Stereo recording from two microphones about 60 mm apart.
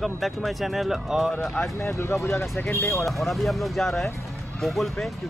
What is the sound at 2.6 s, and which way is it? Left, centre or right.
Speech, left.